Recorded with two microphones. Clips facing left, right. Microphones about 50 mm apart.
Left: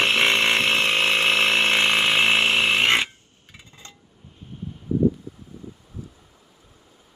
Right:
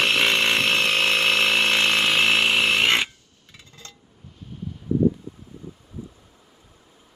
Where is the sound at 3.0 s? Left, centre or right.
Left.